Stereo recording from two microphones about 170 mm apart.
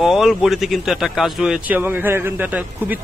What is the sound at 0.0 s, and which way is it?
Speech, centre (ahead or behind).